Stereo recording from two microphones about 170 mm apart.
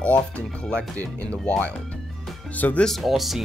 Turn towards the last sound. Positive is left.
turn(degrees=0)  # may be behind; listen again after turning